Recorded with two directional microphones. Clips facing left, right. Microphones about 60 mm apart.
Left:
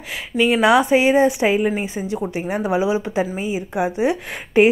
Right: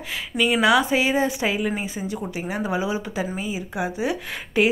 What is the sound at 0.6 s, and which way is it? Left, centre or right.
A woman's voice, left.